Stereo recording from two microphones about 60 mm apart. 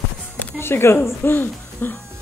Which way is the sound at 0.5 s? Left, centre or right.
Left.